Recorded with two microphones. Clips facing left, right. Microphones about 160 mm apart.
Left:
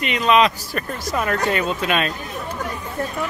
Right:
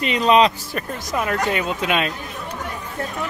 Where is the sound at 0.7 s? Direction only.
15° right (ahead or behind).